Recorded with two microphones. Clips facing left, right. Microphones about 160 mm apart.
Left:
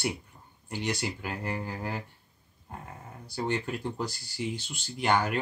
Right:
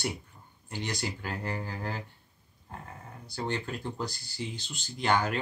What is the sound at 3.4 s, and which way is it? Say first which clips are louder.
Speech: left 3 dB; 10° left (ahead or behind).